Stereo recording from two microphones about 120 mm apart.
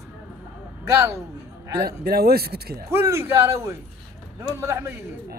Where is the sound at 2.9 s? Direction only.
20° right (ahead or behind).